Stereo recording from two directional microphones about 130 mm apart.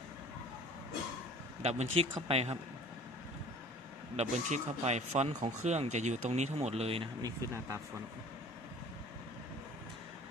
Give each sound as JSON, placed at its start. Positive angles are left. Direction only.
{"t": 1.6, "sound": "speech", "side_deg": -55}
{"t": 4.2, "sound": "speech", "side_deg": -60}
{"t": 7.2, "sound": "speech", "side_deg": -25}